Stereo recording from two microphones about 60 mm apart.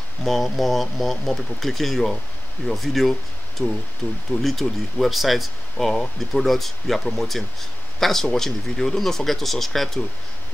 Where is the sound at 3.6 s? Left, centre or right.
Left.